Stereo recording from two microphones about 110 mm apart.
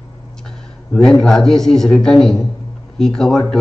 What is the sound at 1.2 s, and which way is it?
Speech, 5° left (ahead or behind).